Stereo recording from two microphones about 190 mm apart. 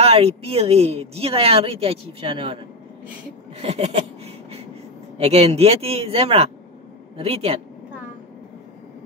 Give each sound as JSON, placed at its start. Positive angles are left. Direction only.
{"t": 0.0, "sound": "speech", "side_deg": -30}
{"t": 3.5, "sound": "a sound", "side_deg": -35}
{"t": 5.1, "sound": "speech", "side_deg": -35}